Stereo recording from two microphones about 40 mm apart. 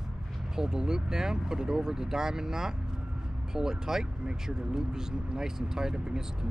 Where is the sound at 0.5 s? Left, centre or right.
Centre.